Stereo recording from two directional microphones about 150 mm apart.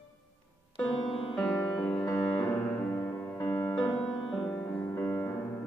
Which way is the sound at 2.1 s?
10° left (ahead or behind).